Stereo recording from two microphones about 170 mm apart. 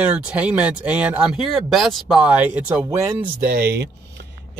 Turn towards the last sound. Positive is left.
turn(degrees=-65)  # may be behind; listen again after turning